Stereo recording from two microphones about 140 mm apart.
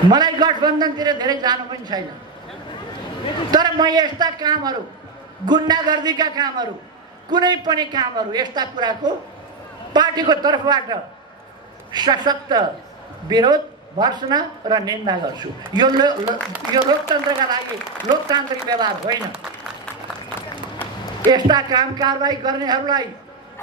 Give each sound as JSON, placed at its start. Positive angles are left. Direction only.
{"t": 0.1, "sound": "a man's voice", "side_deg": -30}
{"t": 3.5, "sound": "a man's voice", "side_deg": -30}
{"t": 20.3, "sound": "run", "side_deg": 15}
{"t": 21.3, "sound": "a man's voice", "side_deg": -30}